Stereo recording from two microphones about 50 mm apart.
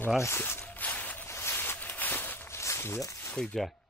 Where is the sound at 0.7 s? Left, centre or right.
Left.